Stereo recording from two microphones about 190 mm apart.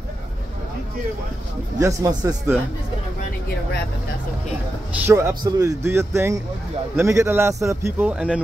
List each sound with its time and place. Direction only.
1.8 s a man's voice: 15° right (ahead or behind)
5.0 s a man's voice: 15° right (ahead or behind)